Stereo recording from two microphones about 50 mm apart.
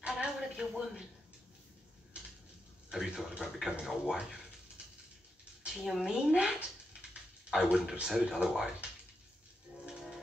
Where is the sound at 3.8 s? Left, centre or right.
Centre.